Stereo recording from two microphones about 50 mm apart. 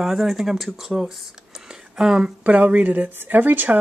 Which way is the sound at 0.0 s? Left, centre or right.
Centre.